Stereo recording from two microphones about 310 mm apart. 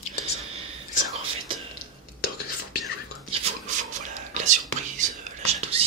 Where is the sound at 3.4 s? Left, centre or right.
Right.